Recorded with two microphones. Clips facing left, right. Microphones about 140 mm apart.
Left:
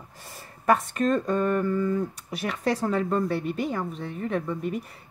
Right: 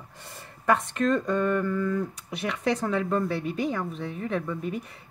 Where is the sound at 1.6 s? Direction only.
25° left (ahead or behind).